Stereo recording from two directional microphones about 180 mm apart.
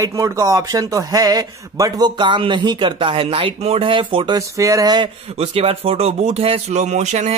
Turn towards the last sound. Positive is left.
turn(degrees=-40)  # may be behind; listen again after turning